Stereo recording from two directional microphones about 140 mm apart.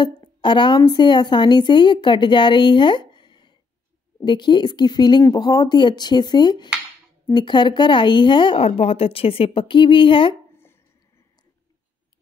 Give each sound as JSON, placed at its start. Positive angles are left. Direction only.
{"t": 0.0, "sound": "a woman's voice", "side_deg": 35}